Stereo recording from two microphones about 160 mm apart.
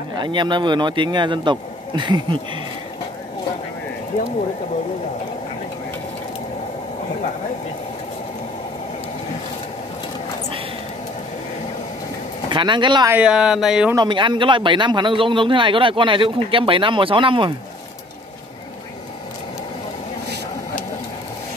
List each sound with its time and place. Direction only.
0.1 s a man's voice: 30° right (ahead or behind)
12.4 s a man's voice: 30° right (ahead or behind)
13.1 s speech: 5° right (ahead or behind)
13.9 s speech: 30° right (ahead or behind)